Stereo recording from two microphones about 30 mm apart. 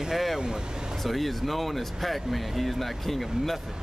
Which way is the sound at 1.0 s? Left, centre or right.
Centre.